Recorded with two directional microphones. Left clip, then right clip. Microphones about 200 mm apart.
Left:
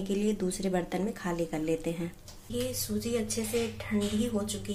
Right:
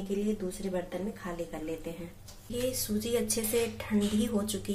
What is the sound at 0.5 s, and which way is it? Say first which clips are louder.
Speech: left 3 dB; 55° left (ahead or behind).